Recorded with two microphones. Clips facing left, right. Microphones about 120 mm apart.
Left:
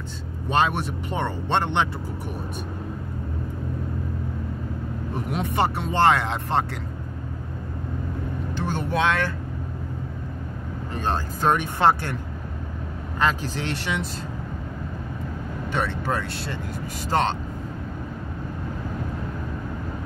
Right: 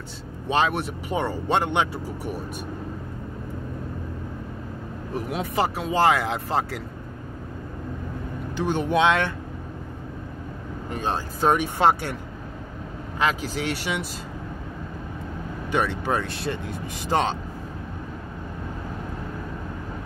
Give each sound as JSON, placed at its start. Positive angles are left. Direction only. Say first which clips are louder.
{"t": 0.5, "sound": "speech", "louder": "even", "side_deg": 0}
{"t": 5.1, "sound": "speech", "louder": "even", "side_deg": 0}
{"t": 8.5, "sound": "speech", "louder": "right 4 dB", "side_deg": -15}
{"t": 10.9, "sound": "speech", "louder": "even", "side_deg": -10}
{"t": 13.2, "sound": "speech", "louder": "even", "side_deg": -10}
{"t": 15.9, "sound": "speech", "louder": "right 1 dB", "side_deg": -15}